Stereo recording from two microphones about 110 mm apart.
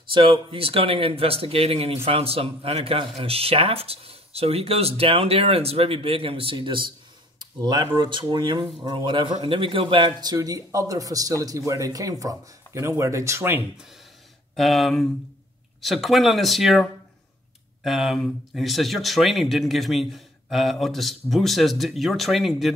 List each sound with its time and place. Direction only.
0.1 s a man's voice: 55° right (ahead or behind); by 13.7 s 20° right (ahead or behind)
14.5 s speech: centre (ahead or behind)
17.8 s speech: centre (ahead or behind)